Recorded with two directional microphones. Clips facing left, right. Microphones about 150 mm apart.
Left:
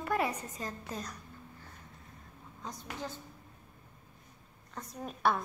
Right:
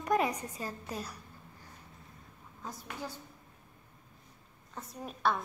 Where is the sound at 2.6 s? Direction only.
5° right (ahead or behind).